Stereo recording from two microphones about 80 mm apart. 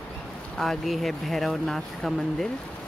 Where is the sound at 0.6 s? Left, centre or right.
Centre.